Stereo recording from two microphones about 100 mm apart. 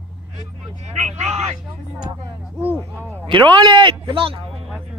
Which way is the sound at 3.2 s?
55° right (ahead or behind).